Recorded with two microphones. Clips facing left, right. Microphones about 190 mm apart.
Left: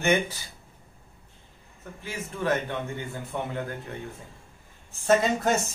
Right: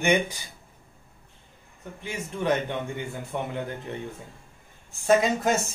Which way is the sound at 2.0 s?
15° right (ahead or behind).